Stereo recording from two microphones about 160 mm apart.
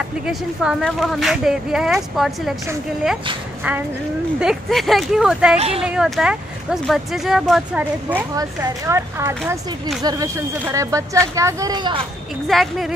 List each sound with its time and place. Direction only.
0.2 s speech: 5° right (ahead or behind)
4.4 s speech: centre (ahead or behind)
8.4 s speech: 15° right (ahead or behind)
12.4 s speech: centre (ahead or behind)